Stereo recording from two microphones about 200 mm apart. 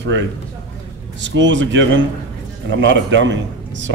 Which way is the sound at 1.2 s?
65° right (ahead or behind).